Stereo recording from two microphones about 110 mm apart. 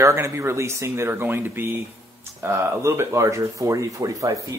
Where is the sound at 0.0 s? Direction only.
25° right (ahead or behind).